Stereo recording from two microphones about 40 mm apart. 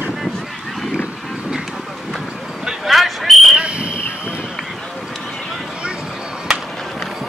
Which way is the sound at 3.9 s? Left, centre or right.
Left.